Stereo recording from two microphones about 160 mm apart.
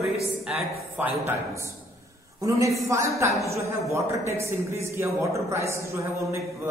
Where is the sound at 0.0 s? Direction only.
5° right (ahead or behind).